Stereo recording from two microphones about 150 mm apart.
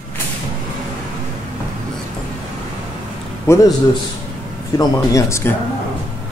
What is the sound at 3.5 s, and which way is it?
Speech, 15° left (ahead or behind).